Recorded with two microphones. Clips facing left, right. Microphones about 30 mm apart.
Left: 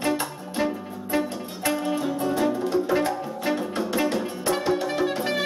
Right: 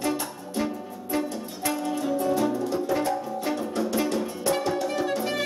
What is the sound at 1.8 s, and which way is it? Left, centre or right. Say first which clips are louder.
Music: left 1 dB; left.